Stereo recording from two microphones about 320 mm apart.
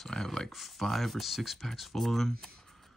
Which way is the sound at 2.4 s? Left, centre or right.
Centre.